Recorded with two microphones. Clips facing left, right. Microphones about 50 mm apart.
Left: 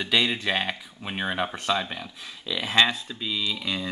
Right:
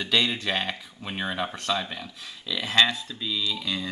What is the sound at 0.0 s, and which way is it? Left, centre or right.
Speech, centre.